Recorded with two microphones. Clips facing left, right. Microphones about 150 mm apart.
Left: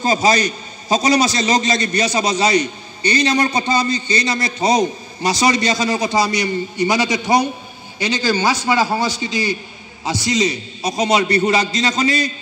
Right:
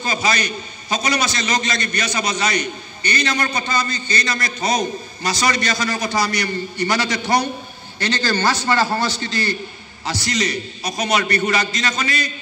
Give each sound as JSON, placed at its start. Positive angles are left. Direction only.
{"t": 0.0, "sound": "a man's voice", "side_deg": 35}
{"t": 3.3, "sound": "a man's voice", "side_deg": 20}
{"t": 3.7, "sound": "a man's voice", "side_deg": 30}